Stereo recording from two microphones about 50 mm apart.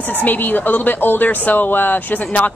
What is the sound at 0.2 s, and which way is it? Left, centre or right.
A woman's voice, left.